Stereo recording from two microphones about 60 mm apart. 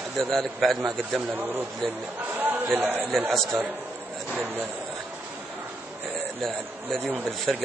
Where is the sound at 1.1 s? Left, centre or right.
Right.